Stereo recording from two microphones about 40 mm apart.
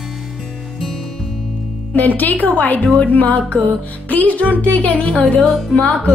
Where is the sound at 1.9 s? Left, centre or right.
Left.